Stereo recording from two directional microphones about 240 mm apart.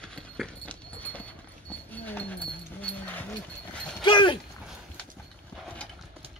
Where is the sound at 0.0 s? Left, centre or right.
Centre.